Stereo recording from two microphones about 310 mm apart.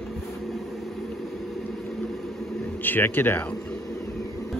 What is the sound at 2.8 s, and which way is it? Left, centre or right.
Speech, centre.